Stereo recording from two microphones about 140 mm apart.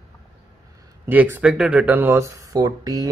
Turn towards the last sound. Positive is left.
turn(degrees=-25)  # may be behind; listen again after turning